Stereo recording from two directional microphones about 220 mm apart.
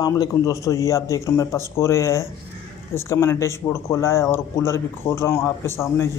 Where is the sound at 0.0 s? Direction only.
15° left (ahead or behind).